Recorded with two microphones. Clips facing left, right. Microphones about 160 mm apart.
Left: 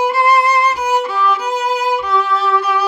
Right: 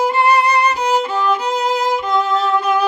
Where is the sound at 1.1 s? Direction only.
30° right (ahead or behind).